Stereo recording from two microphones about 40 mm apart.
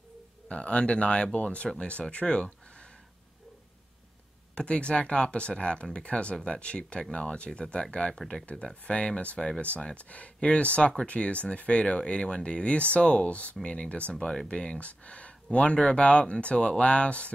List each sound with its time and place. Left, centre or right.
0.5 s speech: left
4.6 s speech: left